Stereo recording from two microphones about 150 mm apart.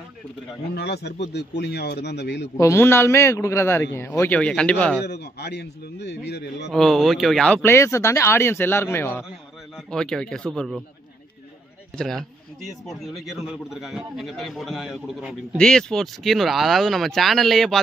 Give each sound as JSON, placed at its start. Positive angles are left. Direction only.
{"t": 0.7, "sound": "speech", "side_deg": 90}
{"t": 2.6, "sound": "a man's voice", "side_deg": 15}
{"t": 5.2, "sound": "speech", "side_deg": 90}
{"t": 6.7, "sound": "a man's voice", "side_deg": 0}
{"t": 7.6, "sound": "a man's voice", "side_deg": 15}
{"t": 9.8, "sound": "a man's voice", "side_deg": 5}
{"t": 12.0, "sound": "a man's voice", "side_deg": 5}